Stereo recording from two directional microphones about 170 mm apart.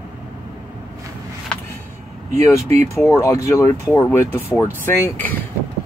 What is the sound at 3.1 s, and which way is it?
Speech, 15° left (ahead or behind).